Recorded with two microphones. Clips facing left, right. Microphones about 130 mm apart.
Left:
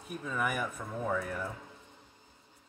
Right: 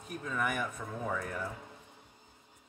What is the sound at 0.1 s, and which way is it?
Speech, 5° left (ahead or behind).